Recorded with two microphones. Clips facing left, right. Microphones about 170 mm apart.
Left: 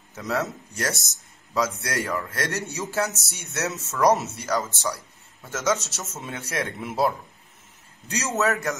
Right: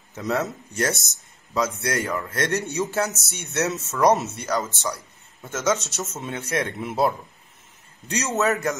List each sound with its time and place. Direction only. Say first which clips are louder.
0.1 s a man's voice: right 2 dB; centre (ahead or behind)
4.1 s speech: right 1 dB; 25° right (ahead or behind)
4.4 s a man's voice: right 1 dB; centre (ahead or behind)